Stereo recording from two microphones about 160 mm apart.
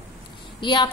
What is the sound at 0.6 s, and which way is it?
Speech, 30° left (ahead or behind).